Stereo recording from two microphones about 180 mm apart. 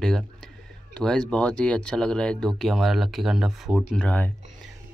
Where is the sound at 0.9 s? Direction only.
5° left (ahead or behind).